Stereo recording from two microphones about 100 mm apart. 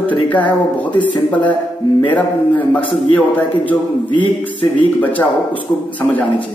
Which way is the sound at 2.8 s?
60° left (ahead or behind).